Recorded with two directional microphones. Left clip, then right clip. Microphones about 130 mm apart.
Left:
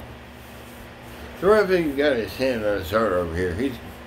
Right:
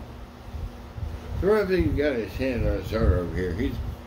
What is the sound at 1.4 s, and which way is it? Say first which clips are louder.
Speech: left 4 dB; 25° right (ahead or behind).